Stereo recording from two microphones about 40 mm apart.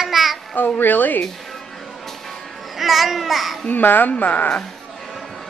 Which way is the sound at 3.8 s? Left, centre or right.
Left.